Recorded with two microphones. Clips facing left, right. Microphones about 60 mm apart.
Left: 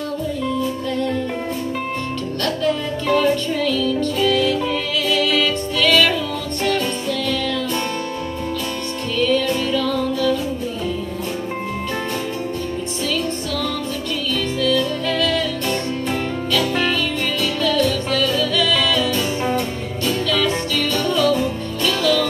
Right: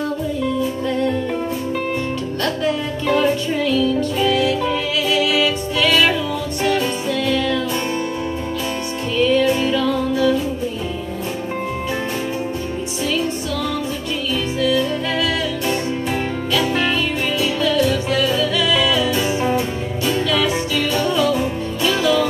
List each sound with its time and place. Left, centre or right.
2.4 s music: centre
9.2 s music: centre
14.6 s music: centre